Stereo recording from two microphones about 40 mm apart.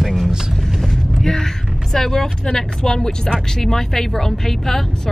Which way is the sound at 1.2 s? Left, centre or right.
Centre.